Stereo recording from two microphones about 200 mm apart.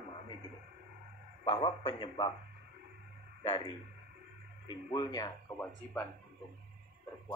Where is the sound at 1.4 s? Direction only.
25° left (ahead or behind).